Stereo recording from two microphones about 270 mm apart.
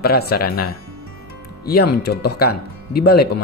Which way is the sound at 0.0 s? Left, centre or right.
Left.